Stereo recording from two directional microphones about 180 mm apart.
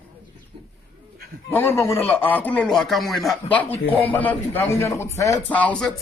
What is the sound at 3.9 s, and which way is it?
Speech, 30° left (ahead or behind).